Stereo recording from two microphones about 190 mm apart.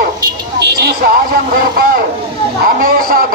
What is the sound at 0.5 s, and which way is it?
Speech, 60° right (ahead or behind).